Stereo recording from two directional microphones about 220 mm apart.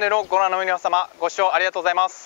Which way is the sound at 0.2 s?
25° left (ahead or behind).